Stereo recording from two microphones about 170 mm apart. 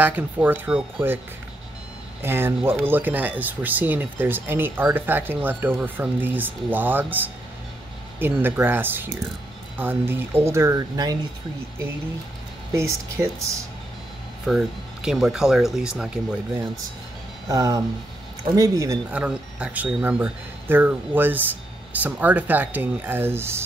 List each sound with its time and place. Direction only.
0.0 s speech: 10° right (ahead or behind)
2.2 s speech: 15° right (ahead or behind)
12.7 s speech: 15° right (ahead or behind)
14.4 s speech: 5° right (ahead or behind)
17.5 s speech: 20° right (ahead or behind)
19.0 s speech: 5° right (ahead or behind)